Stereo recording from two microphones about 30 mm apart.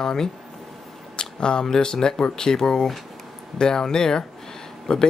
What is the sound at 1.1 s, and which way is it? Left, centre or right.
Speech, left.